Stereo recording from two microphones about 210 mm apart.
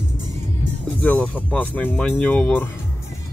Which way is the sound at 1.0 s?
5° left (ahead or behind).